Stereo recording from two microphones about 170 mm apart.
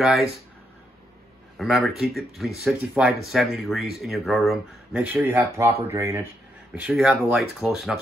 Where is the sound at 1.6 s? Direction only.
Centre (ahead or behind).